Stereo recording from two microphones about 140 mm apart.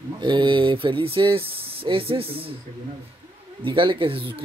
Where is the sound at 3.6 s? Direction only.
35° right (ahead or behind).